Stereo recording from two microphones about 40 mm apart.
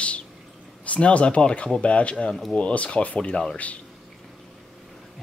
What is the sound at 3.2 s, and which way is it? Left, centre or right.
Speech, left.